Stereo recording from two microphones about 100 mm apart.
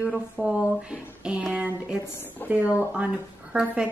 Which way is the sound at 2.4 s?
20° left (ahead or behind).